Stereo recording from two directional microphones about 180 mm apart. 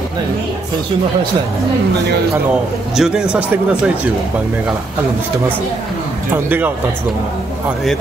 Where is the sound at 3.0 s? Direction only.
5° right (ahead or behind).